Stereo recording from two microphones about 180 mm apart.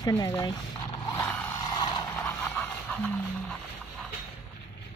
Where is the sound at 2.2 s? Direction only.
10° left (ahead or behind).